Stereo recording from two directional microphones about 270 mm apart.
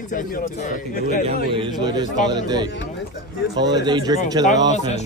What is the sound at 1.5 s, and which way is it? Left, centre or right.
Speech, centre.